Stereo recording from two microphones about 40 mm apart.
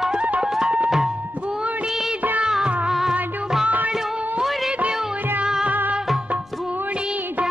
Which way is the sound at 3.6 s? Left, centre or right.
Right.